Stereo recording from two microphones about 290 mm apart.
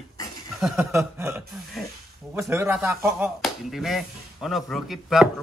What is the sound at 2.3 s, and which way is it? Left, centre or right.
Speech, centre.